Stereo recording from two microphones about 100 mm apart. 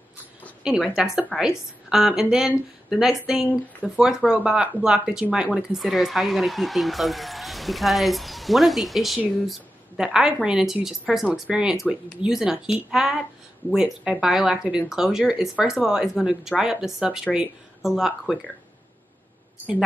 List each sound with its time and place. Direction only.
0.7 s speech: 5° right (ahead or behind)